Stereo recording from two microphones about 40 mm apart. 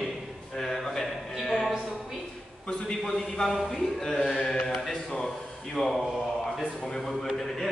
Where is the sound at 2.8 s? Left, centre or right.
Centre.